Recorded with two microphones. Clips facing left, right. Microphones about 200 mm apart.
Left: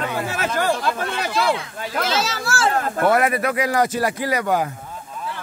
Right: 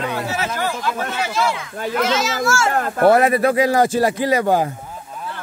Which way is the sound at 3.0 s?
30° right (ahead or behind).